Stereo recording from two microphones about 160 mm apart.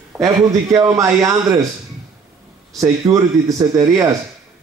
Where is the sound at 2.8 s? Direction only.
20° right (ahead or behind).